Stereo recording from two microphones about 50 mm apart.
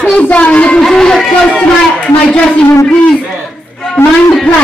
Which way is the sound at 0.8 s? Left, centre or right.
Centre.